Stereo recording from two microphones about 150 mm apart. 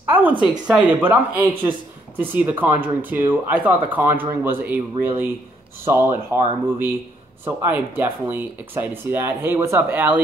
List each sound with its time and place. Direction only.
0.0 s speech: 10° right (ahead or behind)
1.5 s speech: 30° right (ahead or behind)
2.1 s speech: 10° right (ahead or behind)